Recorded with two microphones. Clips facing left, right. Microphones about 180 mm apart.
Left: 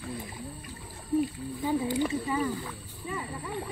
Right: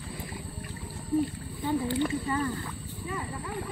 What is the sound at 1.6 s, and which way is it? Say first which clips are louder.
Speech: even; 10° left (ahead or behind).